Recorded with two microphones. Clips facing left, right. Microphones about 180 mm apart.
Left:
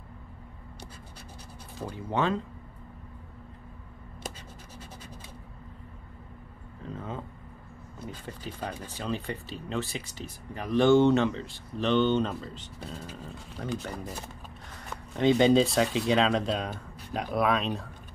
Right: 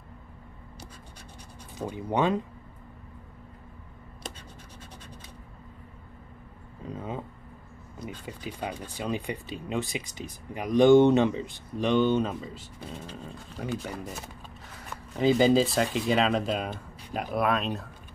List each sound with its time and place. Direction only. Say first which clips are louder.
1.8 s speech: right 3 dB; 15° right (ahead or behind)
7.0 s speech: right 2 dB; 10° right (ahead or behind)
8.3 s speech: right 2 dB; 10° right (ahead or behind)
13.0 s speech: right 1 dB; 5° left (ahead or behind)
13.8 s speech: right 1 dB; 5° right (ahead or behind)